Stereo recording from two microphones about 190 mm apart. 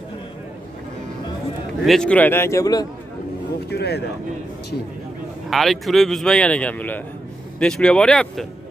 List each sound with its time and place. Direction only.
1.9 s a man's voice: 5° left (ahead or behind)
3.7 s speech: 60° left (ahead or behind)
5.5 s speech: centre (ahead or behind)